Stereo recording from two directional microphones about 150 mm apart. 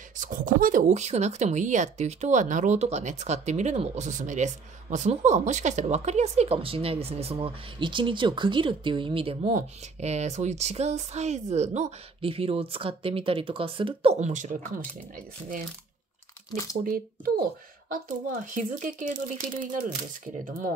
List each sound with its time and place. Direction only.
0.2 s speech: 65° right (ahead or behind); by 9.5 s 40° right (ahead or behind)
9.5 s speech: 50° right (ahead or behind)
12.2 s speech: 40° right (ahead or behind); by 14.8 s 65° right (ahead or behind)
16.8 s speech: 70° right (ahead or behind)